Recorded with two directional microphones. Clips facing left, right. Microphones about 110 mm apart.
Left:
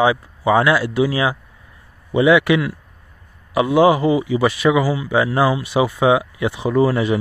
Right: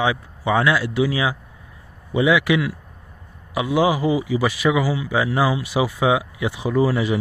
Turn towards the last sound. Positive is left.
turn(degrees=60)  # may be behind; listen again after turning